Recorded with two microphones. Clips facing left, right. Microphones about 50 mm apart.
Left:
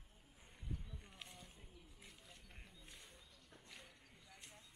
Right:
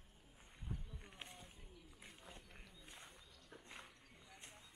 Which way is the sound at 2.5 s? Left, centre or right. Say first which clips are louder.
Right 1 dB; centre.